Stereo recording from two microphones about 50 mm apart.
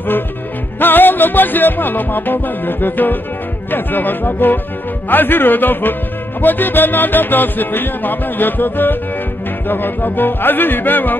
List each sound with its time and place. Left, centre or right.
0.7 s music: left